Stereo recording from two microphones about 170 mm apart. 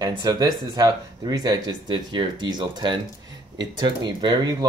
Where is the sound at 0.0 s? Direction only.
25° right (ahead or behind).